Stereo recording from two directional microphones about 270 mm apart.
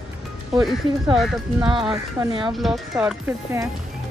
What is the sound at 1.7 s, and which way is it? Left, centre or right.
Speech, centre.